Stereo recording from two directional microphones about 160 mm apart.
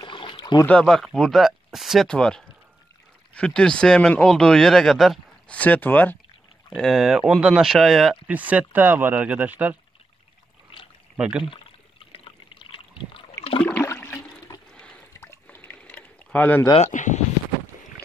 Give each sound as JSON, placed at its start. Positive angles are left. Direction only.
{"t": 0.0, "sound": "a sound", "side_deg": 30}
{"t": 0.7, "sound": "speech", "side_deg": 5}
{"t": 5.6, "sound": "speech", "side_deg": 10}
{"t": 6.7, "sound": "speech", "side_deg": 0}
{"t": 11.1, "sound": "speech", "side_deg": -5}
{"t": 11.4, "sound": "water", "side_deg": 35}
{"t": 13.6, "sound": "a sound", "side_deg": 10}
{"t": 14.7, "sound": "a sound", "side_deg": 5}
{"t": 16.7, "sound": "speech", "side_deg": 45}